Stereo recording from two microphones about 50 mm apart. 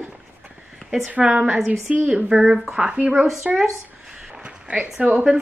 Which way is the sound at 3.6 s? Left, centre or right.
Centre.